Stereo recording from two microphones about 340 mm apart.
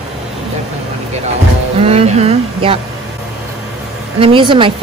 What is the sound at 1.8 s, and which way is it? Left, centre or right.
A woman's voice, centre.